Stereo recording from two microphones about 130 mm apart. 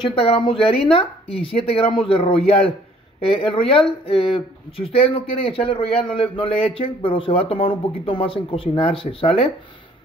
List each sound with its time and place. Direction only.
0.0 s speech: 40° left (ahead or behind)